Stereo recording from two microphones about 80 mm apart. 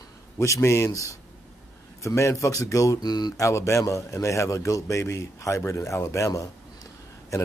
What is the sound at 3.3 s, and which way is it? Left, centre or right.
A man's voice, left.